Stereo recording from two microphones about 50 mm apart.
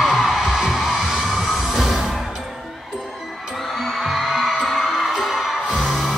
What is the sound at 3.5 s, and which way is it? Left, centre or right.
Music, centre.